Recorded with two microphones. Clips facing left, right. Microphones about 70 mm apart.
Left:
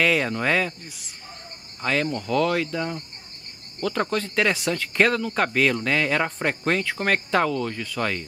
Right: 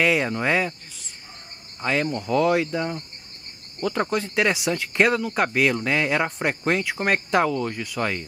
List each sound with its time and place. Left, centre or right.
0.0 s speech: centre
1.8 s speech: centre